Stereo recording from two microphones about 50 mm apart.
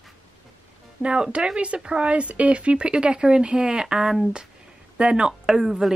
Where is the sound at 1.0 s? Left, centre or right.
Right.